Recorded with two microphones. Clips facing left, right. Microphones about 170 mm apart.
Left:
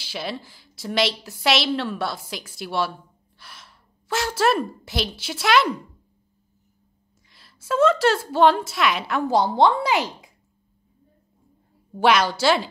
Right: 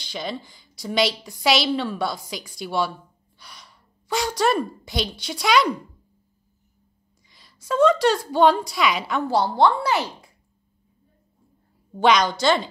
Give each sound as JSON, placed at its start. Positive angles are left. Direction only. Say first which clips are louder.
{"t": 0.0, "sound": "a woman's voice", "louder": "even", "side_deg": 5}
{"t": 7.2, "sound": "a woman's voice", "louder": "even", "side_deg": 0}
{"t": 9.3, "sound": "speech", "louder": "left 1 dB", "side_deg": 20}
{"t": 12.0, "sound": "speech", "louder": "even", "side_deg": 5}